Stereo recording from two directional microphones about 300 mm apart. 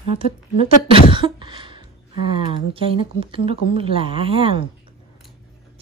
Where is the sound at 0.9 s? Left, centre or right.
Centre.